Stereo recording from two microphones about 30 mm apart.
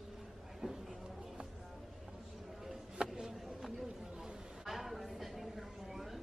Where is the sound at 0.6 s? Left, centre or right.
Right.